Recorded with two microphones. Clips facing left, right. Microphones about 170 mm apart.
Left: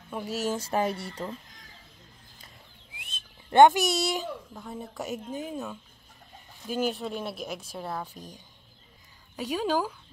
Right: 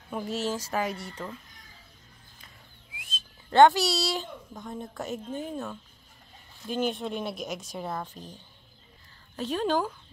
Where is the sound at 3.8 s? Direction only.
50° left (ahead or behind).